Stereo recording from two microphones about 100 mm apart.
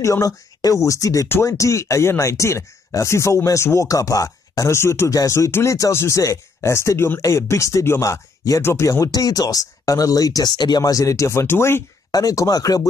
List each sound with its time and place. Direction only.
0.0 s speech: 35° left (ahead or behind)
12.1 s speech: 35° left (ahead or behind)